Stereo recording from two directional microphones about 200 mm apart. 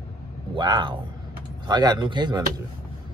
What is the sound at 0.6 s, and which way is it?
Speech, 20° right (ahead or behind).